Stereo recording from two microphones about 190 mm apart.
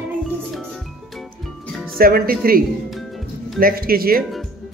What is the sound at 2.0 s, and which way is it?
Speech, 50° right (ahead or behind).